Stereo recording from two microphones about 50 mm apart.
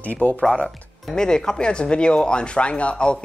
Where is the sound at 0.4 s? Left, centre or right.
Centre.